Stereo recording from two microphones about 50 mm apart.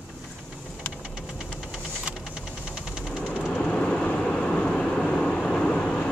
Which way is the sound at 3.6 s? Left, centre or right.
Centre.